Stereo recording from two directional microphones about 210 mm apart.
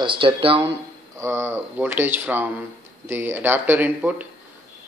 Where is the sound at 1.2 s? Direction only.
10° right (ahead or behind).